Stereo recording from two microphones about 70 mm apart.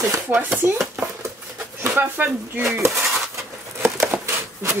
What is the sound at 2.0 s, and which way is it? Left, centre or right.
Speech, right.